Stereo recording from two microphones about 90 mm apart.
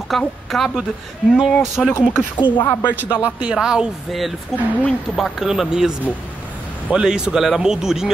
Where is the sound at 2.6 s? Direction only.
25° left (ahead or behind).